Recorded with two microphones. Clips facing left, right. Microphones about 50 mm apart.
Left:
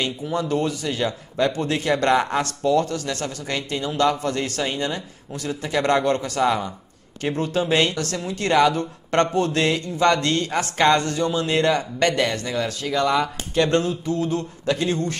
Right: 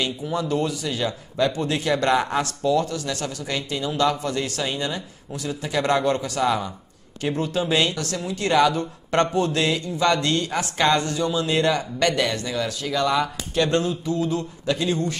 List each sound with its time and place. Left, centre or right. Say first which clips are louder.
0.0 s speech: left 1 dB; left